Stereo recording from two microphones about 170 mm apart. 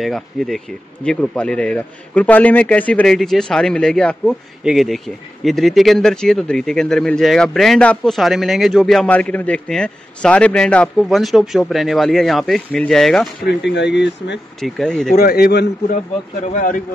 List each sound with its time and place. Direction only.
0.0 s a man's voice: centre (ahead or behind)
13.5 s speech: 90° left
14.6 s a man's voice: 5° left (ahead or behind)
15.1 s a man's voice: 65° left (ahead or behind)
16.5 s speech: 50° left (ahead or behind)